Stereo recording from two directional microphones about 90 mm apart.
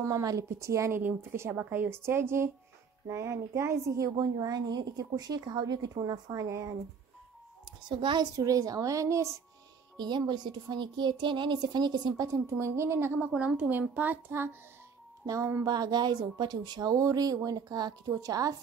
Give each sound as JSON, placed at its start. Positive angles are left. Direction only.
{"t": 0.0, "sound": "a woman's voice", "side_deg": -40}
{"t": 8.0, "sound": "speech", "side_deg": -60}
{"t": 8.4, "sound": "a woman's voice", "side_deg": -40}
{"t": 9.9, "sound": "speech", "side_deg": -55}
{"t": 12.3, "sound": "a woman's voice", "side_deg": -30}
{"t": 13.3, "sound": "a woman's voice", "side_deg": -10}
{"t": 15.2, "sound": "a woman's voice", "side_deg": -35}
{"t": 15.6, "sound": "a woman's voice", "side_deg": -50}